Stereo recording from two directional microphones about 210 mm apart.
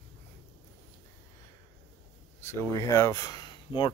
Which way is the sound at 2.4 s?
10° left (ahead or behind).